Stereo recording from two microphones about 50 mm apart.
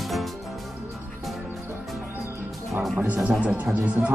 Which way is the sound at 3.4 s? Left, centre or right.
Right.